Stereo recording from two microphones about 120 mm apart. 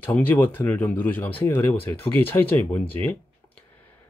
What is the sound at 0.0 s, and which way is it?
Speech, 15° left (ahead or behind).